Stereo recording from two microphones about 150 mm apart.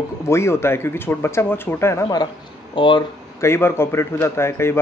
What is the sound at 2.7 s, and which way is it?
Speech, 30° left (ahead or behind).